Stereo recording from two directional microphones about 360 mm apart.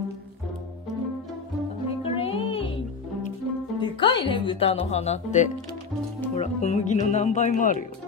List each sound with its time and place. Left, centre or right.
2.0 s music: centre
3.8 s speech: centre